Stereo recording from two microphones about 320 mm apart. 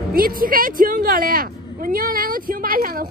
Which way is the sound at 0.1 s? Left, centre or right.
Right.